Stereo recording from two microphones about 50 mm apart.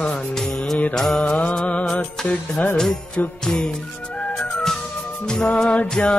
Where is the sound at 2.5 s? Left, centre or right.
Left.